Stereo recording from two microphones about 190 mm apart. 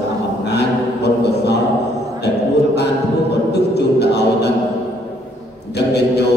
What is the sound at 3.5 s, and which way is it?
Music, 60° left (ahead or behind).